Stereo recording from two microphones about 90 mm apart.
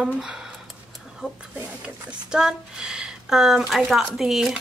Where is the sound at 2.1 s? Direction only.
10° right (ahead or behind).